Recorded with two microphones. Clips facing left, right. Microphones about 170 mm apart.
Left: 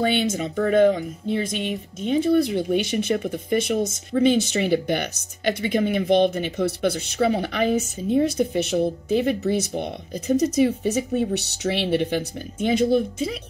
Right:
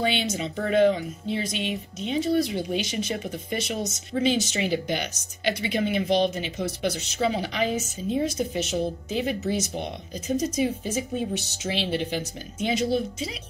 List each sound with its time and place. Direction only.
0.0 s speech: 50° left (ahead or behind)